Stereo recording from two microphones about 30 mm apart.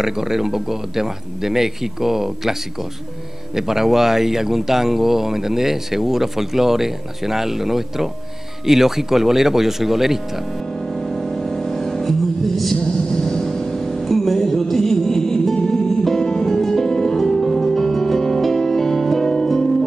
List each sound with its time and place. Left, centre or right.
0.0 s speech: centre
10.8 s music: centre; by 13.8 s left
13.8 s music: centre